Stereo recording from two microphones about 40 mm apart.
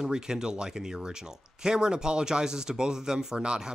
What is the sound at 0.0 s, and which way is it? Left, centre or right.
Speech, centre.